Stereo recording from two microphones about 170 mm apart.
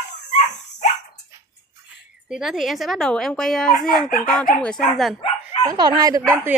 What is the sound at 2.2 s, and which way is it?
Speech, 5° right (ahead or behind).